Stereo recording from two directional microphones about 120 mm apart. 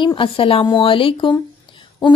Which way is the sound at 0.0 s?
45° left (ahead or behind).